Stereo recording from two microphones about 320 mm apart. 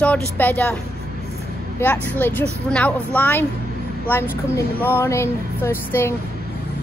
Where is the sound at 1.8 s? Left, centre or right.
Centre.